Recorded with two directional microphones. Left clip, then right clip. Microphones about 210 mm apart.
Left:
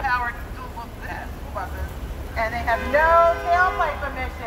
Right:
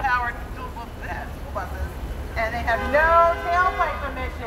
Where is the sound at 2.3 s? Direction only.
Centre (ahead or behind).